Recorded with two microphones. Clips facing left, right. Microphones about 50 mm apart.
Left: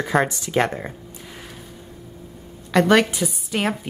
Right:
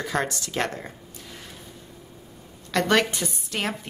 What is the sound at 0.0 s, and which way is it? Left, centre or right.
Speech, left.